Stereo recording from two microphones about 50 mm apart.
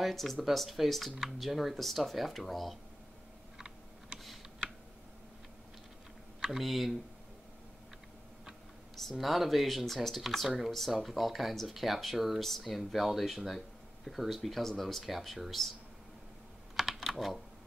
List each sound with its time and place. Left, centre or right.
0.0 s speech: centre
3.5 s computer keyboard: centre
6.4 s speech: centre
9.1 s speech: centre
16.7 s typing: centre